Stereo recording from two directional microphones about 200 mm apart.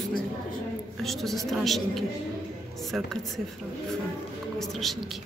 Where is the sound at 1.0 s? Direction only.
Centre (ahead or behind).